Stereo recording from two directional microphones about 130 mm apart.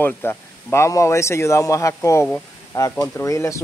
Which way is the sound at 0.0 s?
15° left (ahead or behind).